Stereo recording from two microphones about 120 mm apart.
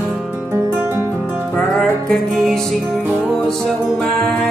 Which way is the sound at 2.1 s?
Centre (ahead or behind).